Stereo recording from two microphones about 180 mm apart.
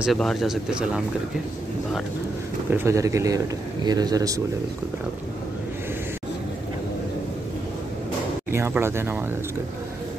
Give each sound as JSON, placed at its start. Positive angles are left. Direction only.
{"t": 0.0, "sound": "speech", "side_deg": 0}
{"t": 2.7, "sound": "a man's voice", "side_deg": -15}
{"t": 8.5, "sound": "speech", "side_deg": -15}